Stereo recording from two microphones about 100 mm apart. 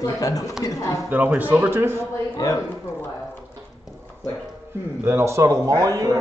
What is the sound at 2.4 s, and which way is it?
Speech, 40° left (ahead or behind).